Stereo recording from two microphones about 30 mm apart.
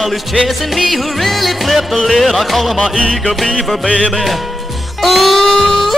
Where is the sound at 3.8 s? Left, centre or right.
Left.